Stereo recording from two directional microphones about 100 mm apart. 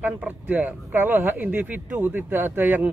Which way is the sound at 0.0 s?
15° right (ahead or behind).